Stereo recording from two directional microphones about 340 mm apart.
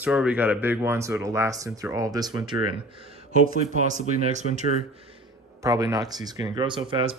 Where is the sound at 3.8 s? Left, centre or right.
Right.